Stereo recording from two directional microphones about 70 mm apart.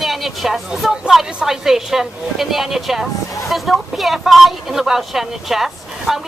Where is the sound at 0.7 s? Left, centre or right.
Centre.